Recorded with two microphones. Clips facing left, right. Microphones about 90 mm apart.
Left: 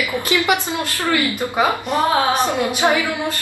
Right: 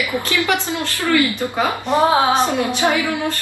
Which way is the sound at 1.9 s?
20° right (ahead or behind).